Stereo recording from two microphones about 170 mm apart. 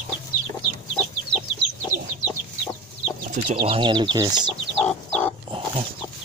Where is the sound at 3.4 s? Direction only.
30° right (ahead or behind).